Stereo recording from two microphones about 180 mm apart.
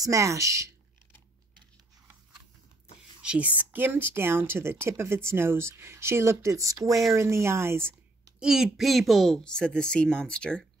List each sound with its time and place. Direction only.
0.0 s speech: 15° right (ahead or behind)
3.2 s speech: 5° right (ahead or behind)